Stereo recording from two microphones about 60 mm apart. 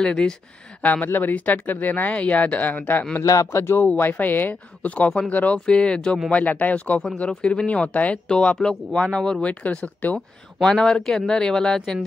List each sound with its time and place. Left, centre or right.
0.0 s speech: centre
0.8 s speech: left
3.5 s speech: left
3.8 s speech: left
4.8 s speech: left
6.3 s speech: left
10.6 s speech: centre